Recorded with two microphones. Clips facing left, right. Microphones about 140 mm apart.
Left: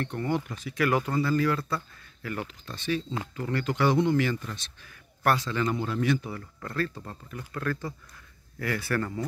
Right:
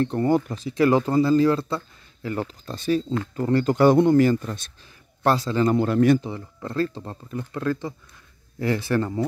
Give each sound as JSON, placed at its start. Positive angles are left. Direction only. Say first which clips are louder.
{"t": 0.0, "sound": "speech", "louder": "right 9 dB", "side_deg": -35}
{"t": 5.2, "sound": "speech", "louder": "right 5 dB", "side_deg": -30}
{"t": 5.7, "sound": "speech", "louder": "right 10 dB", "side_deg": -55}
{"t": 6.2, "sound": "speech", "louder": "right 5 dB", "side_deg": -25}